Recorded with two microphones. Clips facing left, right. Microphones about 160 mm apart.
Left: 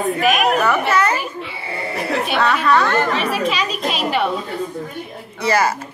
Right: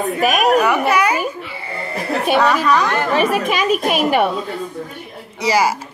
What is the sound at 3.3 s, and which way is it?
A woman's voice, 50° right (ahead or behind).